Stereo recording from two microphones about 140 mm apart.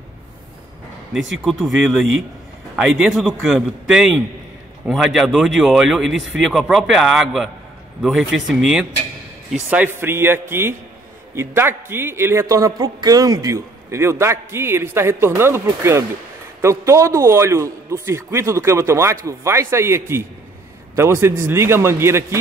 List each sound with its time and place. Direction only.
1.1 s a man's voice: centre (ahead or behind); by 22.4 s 20° right (ahead or behind)